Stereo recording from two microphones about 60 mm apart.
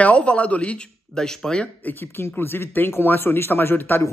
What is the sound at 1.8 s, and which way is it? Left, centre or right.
A man's voice, left.